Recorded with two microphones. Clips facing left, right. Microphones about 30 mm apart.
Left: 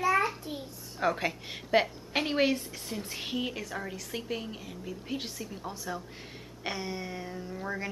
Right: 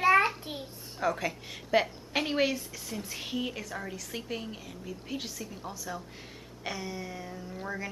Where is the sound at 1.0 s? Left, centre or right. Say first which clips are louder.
Left 1 dB; centre.